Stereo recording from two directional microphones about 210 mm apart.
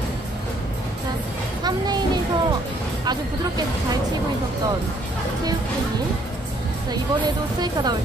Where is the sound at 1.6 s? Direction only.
20° right (ahead or behind).